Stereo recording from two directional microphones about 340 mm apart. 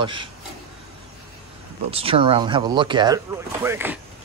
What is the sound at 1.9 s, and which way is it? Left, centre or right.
Speech, centre.